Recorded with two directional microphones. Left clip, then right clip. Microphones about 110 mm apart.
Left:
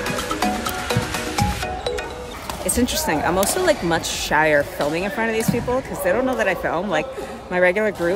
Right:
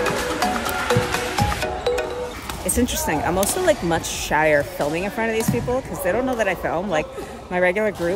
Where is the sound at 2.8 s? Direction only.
15° left (ahead or behind).